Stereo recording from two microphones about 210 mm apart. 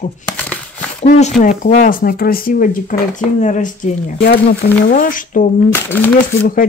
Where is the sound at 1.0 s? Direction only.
35° left (ahead or behind).